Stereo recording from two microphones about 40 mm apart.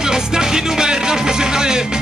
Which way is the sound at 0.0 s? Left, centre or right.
Centre.